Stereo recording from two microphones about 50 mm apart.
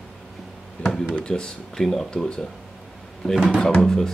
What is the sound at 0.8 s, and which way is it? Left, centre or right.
Speech, left.